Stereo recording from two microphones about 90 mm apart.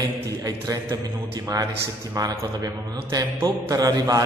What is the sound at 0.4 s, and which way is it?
Mantra, 40° right (ahead or behind).